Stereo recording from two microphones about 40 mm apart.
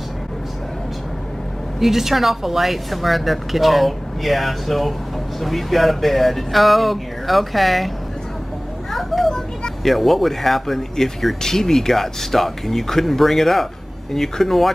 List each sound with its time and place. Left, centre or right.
1.8 s speech: centre
8.9 s a sound: centre
9.8 s speech: centre